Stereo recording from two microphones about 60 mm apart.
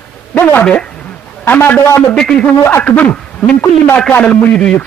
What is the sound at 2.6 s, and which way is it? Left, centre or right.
Speech, left.